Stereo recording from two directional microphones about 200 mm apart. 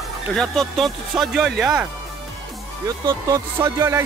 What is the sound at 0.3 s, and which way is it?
Speech, centre (ahead or behind).